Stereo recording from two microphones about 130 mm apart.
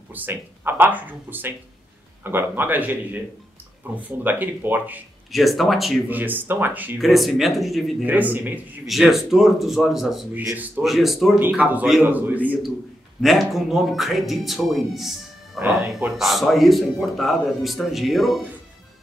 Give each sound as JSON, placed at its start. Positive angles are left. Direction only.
{"t": 0.1, "sound": "speech", "side_deg": -15}
{"t": 5.3, "sound": "speech", "side_deg": 0}
{"t": 6.0, "sound": "speech", "side_deg": -15}
{"t": 7.0, "sound": "speech", "side_deg": 0}
{"t": 8.1, "sound": "speech", "side_deg": -15}
{"t": 8.8, "sound": "speech", "side_deg": 0}
{"t": 10.3, "sound": "speech", "side_deg": -15}
{"t": 10.8, "sound": "speech", "side_deg": 0}
{"t": 11.3, "sound": "speech", "side_deg": -10}
{"t": 13.2, "sound": "speech", "side_deg": 0}